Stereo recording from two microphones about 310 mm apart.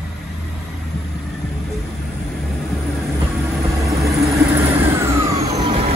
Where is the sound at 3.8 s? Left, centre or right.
Centre.